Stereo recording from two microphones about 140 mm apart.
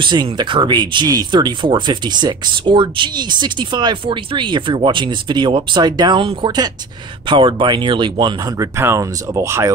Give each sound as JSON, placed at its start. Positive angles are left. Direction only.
{"t": 0.0, "sound": "speech", "side_deg": -30}